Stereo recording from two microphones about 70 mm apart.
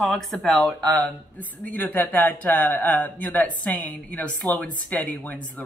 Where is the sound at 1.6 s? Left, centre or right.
Left.